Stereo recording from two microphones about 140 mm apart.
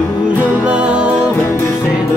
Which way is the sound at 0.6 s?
10° right (ahead or behind).